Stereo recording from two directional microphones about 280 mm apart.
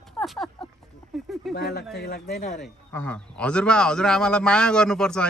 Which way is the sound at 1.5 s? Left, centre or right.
Left.